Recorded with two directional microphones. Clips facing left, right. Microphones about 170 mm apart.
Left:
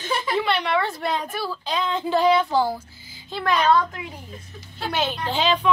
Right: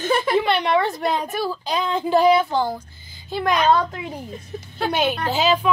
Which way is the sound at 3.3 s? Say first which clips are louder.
Right 2 dB; 15° right (ahead or behind).